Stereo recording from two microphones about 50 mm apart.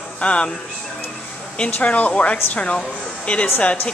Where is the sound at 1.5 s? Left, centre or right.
Left.